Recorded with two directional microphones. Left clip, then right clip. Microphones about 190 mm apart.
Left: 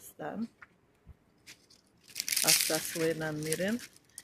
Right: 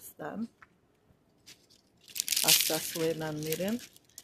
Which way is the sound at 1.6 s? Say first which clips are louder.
Right 2 dB; 25° right (ahead or behind).